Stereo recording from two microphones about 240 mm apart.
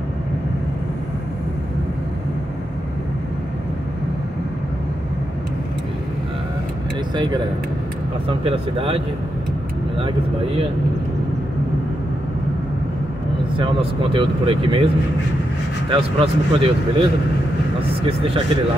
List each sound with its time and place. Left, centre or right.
8.3 s speech: right
13.6 s speech: right
15.9 s speech: right